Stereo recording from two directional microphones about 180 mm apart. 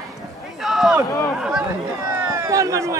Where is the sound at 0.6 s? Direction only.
Centre (ahead or behind).